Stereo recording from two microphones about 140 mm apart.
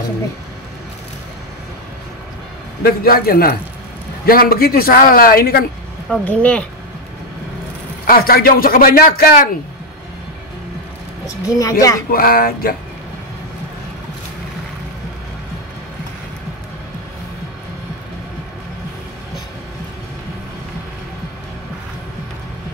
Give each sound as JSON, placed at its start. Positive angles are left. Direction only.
{"t": 2.8, "sound": "speech", "side_deg": 90}
{"t": 6.2, "sound": "speech", "side_deg": 10}
{"t": 8.1, "sound": "speech", "side_deg": 90}
{"t": 11.2, "sound": "speech", "side_deg": 25}
{"t": 12.1, "sound": "speech", "side_deg": 90}